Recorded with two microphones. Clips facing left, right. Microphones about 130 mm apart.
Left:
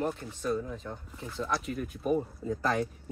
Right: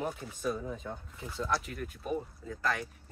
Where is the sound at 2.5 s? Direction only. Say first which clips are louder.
Left 5 dB; 30° left (ahead or behind).